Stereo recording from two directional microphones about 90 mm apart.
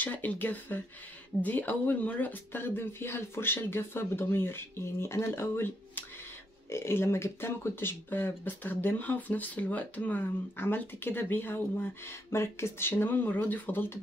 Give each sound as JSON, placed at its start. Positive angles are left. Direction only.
{"t": 0.0, "sound": "speech", "side_deg": 20}